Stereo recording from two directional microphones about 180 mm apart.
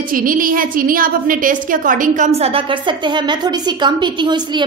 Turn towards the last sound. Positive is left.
turn(degrees=-25)  # may be behind; listen again after turning